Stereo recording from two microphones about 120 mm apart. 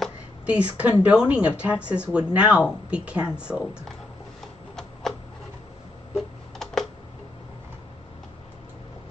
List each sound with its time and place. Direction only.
0.5 s speech: 10° right (ahead or behind)
6.1 s tick: centre (ahead or behind)